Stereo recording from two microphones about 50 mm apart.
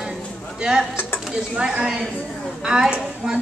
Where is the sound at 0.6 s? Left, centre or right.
Centre.